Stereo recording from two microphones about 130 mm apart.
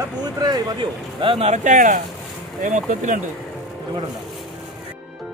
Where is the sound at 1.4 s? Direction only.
65° right (ahead or behind).